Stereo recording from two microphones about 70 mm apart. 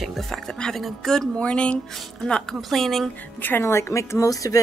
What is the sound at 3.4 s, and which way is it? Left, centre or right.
Speech, left.